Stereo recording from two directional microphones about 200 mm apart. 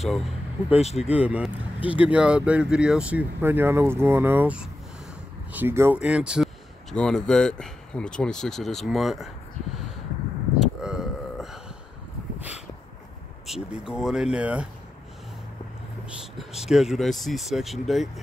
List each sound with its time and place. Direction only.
0.0 s speech: centre (ahead or behind)
0.7 s speech: 30° left (ahead or behind)
1.0 s speech: 5° right (ahead or behind)
10.6 s a sound: 5° right (ahead or behind)
13.5 s speech: centre (ahead or behind)
16.3 s speech: centre (ahead or behind)